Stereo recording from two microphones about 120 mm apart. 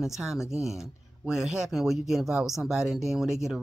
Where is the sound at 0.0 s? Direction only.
5° right (ahead or behind).